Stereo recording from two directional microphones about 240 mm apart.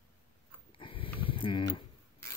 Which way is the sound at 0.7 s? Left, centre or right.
Left.